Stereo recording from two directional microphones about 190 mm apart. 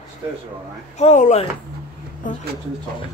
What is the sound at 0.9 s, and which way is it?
Speech, 40° left (ahead or behind).